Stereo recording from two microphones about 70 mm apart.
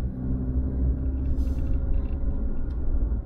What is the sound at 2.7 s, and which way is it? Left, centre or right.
Vehicle, centre.